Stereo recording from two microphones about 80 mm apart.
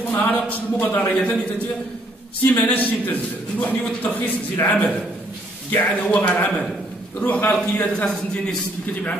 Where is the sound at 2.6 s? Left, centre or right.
Left.